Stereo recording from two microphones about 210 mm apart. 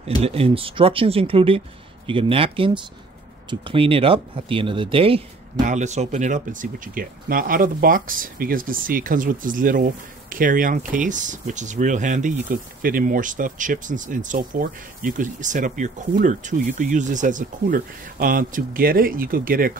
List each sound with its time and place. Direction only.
0.0 s speech: 30° right (ahead or behind)